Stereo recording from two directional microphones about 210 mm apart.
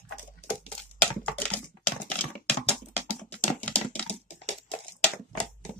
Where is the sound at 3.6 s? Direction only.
5° left (ahead or behind).